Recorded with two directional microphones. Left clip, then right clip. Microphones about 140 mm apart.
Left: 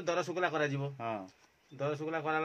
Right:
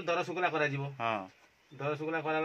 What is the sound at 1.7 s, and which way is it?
Speech, 35° left (ahead or behind).